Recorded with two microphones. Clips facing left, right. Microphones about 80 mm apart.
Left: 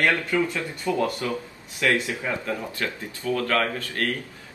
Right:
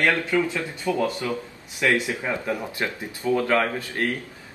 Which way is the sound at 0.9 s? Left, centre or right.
Centre.